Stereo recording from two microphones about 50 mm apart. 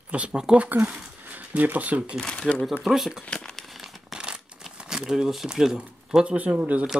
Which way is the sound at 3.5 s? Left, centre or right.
Centre.